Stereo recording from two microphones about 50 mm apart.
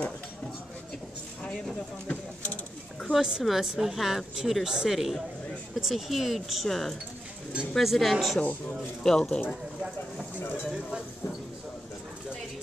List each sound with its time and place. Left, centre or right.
2.0 s a sound: left
3.1 s a woman's voice: centre
8.4 s speech: left
9.0 s speech: centre
10.6 s speech: centre